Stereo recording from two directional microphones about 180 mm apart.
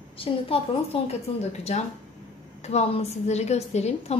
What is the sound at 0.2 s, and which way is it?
A woman's voice, 30° left (ahead or behind).